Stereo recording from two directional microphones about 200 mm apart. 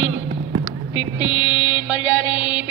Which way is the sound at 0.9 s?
20° left (ahead or behind).